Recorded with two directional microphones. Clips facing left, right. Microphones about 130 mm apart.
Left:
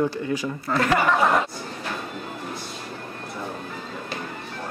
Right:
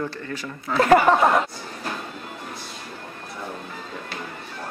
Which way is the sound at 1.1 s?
35° right (ahead or behind).